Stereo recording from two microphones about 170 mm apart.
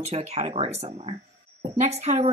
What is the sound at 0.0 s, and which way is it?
A woman's voice, 40° right (ahead or behind).